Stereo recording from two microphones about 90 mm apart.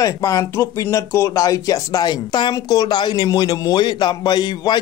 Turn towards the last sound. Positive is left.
turn(degrees=55)  # may be behind; listen again after turning